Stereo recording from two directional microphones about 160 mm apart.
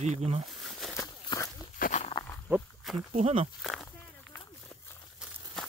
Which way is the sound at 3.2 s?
40° right (ahead or behind).